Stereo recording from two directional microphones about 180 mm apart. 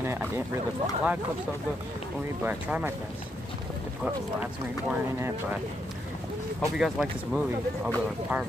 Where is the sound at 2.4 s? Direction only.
10° right (ahead or behind).